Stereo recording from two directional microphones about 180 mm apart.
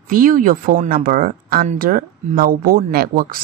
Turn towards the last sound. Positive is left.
turn(degrees=-55)  # may be behind; listen again after turning